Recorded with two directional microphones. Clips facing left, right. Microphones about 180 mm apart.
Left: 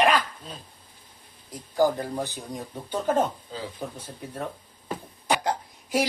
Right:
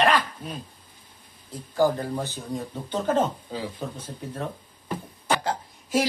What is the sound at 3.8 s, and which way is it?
Speech, 15° left (ahead or behind).